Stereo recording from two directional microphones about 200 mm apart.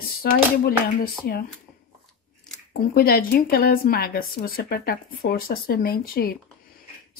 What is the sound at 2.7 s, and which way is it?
Speech, 50° left (ahead or behind).